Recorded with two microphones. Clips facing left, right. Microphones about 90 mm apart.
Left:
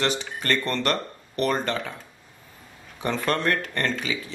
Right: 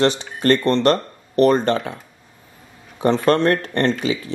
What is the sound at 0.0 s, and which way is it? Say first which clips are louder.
Speech: right 9 dB; 35° right (ahead or behind).